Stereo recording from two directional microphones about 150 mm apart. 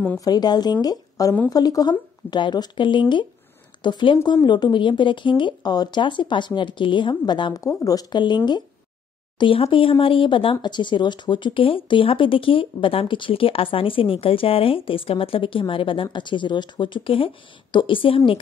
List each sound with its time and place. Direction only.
0.2 s a woman's voice: 25° left (ahead or behind)
9.4 s speech: 35° left (ahead or behind)